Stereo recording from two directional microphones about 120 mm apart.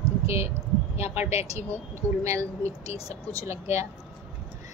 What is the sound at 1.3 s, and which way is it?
Speech, 65° left (ahead or behind).